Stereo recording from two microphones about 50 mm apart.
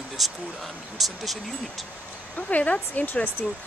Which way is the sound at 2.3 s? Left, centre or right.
Left.